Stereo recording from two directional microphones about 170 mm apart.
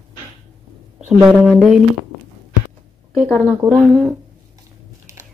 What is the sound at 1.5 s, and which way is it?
Speech, centre (ahead or behind).